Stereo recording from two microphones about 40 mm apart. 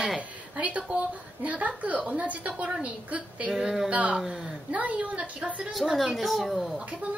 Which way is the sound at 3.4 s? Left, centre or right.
Centre.